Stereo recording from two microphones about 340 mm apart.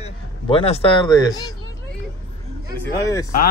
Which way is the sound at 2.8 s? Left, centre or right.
Centre.